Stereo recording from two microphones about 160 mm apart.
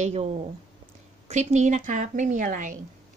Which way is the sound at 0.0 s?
40° right (ahead or behind).